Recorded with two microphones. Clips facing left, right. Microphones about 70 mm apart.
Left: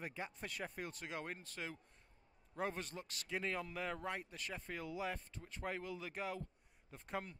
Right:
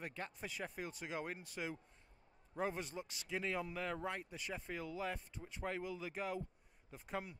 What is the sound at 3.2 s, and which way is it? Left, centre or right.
Speech, centre.